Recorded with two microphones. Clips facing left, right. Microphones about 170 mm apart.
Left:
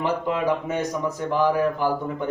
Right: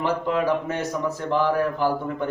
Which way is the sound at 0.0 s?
15° left (ahead or behind).